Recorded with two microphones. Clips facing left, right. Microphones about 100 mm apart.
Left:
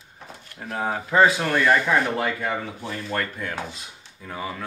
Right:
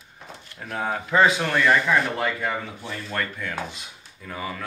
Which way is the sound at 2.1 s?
40° left (ahead or behind).